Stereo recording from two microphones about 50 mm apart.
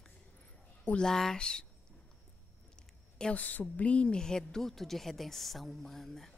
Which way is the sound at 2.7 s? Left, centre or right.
Centre.